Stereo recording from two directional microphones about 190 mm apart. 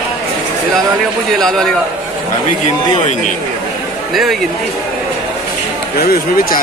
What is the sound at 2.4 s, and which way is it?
Speech, 40° left (ahead or behind).